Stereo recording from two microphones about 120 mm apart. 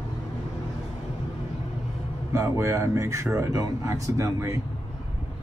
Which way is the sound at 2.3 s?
25° right (ahead or behind).